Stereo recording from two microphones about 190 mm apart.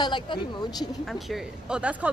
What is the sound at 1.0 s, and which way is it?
Speech, centre (ahead or behind).